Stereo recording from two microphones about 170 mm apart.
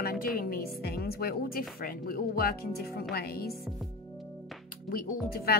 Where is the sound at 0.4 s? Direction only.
60° left (ahead or behind).